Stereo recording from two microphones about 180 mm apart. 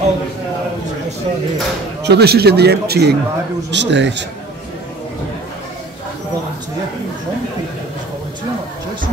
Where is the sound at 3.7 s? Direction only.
80° right.